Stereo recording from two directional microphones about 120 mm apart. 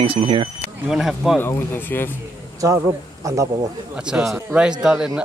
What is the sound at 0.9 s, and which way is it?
Speech, centre (ahead or behind).